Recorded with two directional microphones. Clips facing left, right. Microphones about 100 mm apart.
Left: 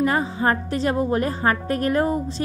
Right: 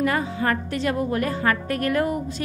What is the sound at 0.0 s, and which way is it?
A woman's voice, 35° left (ahead or behind).